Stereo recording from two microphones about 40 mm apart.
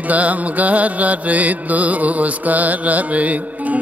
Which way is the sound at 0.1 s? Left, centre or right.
Right.